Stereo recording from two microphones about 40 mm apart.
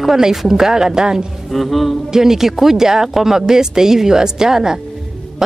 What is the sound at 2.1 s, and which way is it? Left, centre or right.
A woman's voice, centre.